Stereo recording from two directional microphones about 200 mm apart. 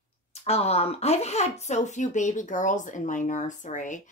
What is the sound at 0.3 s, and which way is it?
A woman's voice, 30° left (ahead or behind).